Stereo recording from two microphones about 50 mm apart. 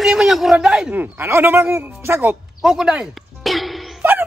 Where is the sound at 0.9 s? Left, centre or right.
Right.